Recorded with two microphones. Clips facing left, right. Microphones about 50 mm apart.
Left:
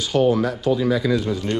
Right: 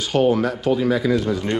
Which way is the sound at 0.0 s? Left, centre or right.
Right.